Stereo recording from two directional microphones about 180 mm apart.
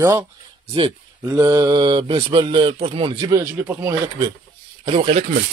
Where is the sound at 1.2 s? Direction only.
15° right (ahead or behind).